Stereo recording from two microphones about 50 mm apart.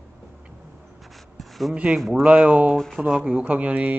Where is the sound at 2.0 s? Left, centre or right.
Centre.